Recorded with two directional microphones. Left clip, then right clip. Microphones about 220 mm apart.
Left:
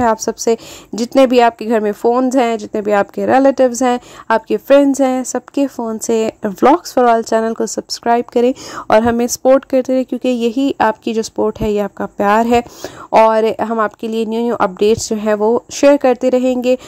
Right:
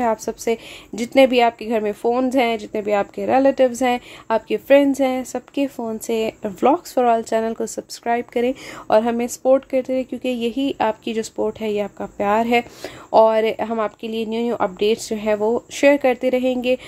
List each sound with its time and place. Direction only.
0.0 s a woman's voice: 30° left (ahead or behind)